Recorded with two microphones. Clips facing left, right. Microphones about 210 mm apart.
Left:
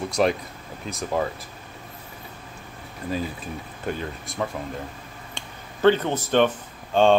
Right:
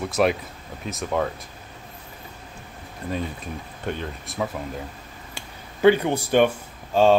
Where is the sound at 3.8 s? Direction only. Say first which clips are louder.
Even; centre (ahead or behind).